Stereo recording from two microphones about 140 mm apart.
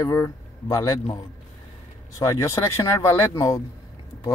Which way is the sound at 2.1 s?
20° left (ahead or behind).